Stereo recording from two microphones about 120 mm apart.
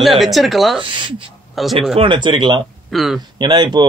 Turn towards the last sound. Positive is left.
turn(degrees=-40)  # may be behind; listen again after turning